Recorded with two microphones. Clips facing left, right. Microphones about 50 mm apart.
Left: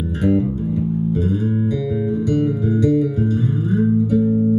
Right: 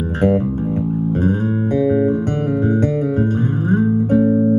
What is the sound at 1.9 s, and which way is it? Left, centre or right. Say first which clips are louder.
Music: right 4 dB; right.